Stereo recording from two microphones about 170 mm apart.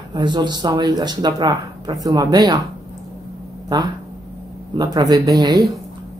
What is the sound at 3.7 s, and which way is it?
Speech, 25° right (ahead or behind).